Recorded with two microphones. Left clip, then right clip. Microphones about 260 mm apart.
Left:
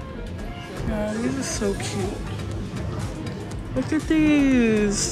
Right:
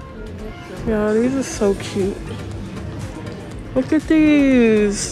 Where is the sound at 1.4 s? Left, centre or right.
Centre.